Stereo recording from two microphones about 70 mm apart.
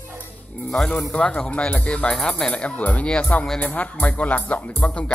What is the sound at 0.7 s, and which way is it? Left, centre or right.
Speech, centre.